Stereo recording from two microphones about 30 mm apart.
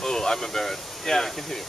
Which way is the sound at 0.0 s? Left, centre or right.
Centre.